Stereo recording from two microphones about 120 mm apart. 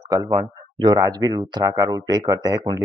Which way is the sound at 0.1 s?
30° right (ahead or behind).